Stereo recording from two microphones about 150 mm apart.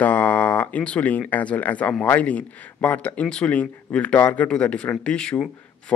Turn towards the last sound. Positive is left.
turn(degrees=5)  # may be behind; listen again after turning